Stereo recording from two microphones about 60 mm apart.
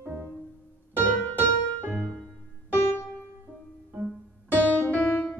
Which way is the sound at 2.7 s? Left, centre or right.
Left.